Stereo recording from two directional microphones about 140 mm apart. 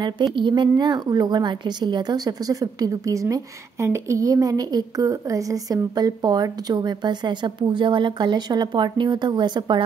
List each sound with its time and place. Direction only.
0.0 s speech: 35° right (ahead or behind)